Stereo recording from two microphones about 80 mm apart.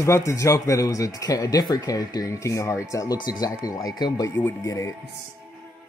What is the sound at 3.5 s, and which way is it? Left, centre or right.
Speech, left.